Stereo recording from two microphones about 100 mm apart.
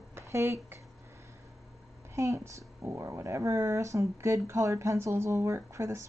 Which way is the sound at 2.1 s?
30° right (ahead or behind).